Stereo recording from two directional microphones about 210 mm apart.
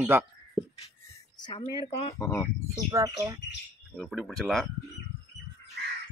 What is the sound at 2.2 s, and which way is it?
Speech, 15° left (ahead or behind).